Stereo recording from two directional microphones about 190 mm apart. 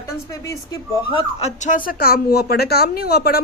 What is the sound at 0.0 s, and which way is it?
Speech, 15° left (ahead or behind).